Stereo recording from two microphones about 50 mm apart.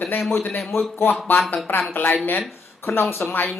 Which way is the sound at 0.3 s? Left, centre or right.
Left.